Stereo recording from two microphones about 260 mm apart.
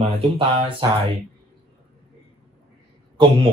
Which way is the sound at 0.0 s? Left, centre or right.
Right.